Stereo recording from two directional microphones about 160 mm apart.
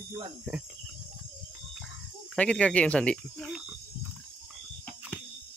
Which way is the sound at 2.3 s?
5° left (ahead or behind).